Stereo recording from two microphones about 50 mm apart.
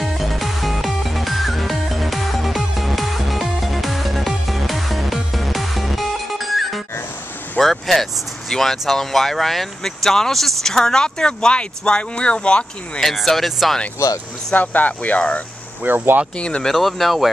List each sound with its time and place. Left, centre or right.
0.0 s music: centre
7.5 s speech: centre
13.0 s speech: centre
14.5 s speech: left
15.8 s speech: right
16.3 s speech: centre
16.6 s speech: centre